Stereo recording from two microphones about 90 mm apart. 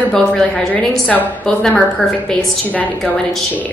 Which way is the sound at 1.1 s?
15° left (ahead or behind).